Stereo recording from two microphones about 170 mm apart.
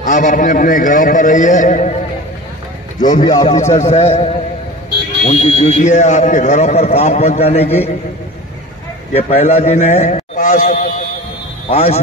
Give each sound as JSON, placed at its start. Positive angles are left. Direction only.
{"t": 0.0, "sound": "a man's voice", "side_deg": 50}
{"t": 3.2, "sound": "speech", "side_deg": 20}
{"t": 3.4, "sound": "speech", "side_deg": 40}
{"t": 9.1, "sound": "speech", "side_deg": 40}